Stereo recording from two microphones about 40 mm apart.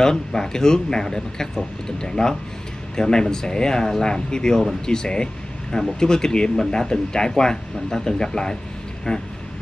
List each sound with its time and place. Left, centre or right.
0.0 s speech: centre